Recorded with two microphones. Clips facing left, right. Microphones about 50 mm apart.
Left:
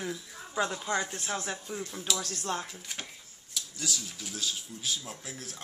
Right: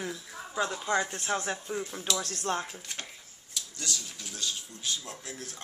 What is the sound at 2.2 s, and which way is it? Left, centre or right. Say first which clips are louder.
Speech: right 2 dB; right.